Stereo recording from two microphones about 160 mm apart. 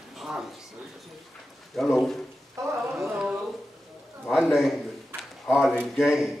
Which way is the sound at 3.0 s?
5° right (ahead or behind).